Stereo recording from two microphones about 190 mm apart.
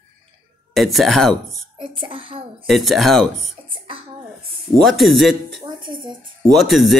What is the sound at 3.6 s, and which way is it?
Cough, 25° right (ahead or behind).